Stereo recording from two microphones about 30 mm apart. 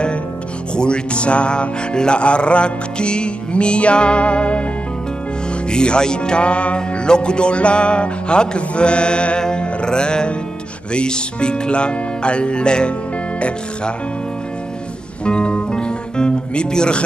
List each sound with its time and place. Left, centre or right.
0.7 s music: left
5.7 s music: left
15.2 s music: left